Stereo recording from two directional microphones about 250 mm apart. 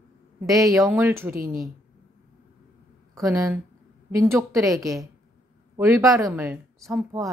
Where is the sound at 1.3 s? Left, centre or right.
Right.